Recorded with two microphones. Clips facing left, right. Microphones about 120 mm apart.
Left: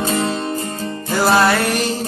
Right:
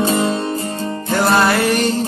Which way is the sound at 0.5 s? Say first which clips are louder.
Right 1 dB; 30° right (ahead or behind).